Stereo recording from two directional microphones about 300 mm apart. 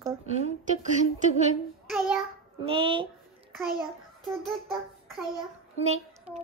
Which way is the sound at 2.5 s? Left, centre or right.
Centre.